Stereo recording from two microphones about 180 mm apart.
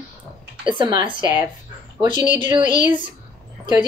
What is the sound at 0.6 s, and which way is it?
Speech, 25° right (ahead or behind).